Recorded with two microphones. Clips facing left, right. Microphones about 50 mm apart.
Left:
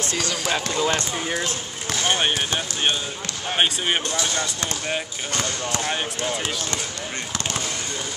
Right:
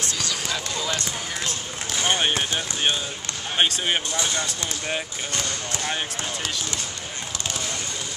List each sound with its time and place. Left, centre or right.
0.0 s speech: left
2.0 s speech: centre